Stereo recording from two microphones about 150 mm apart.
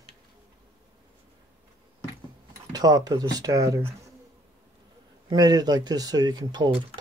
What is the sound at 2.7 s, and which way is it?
Speech, 25° right (ahead or behind).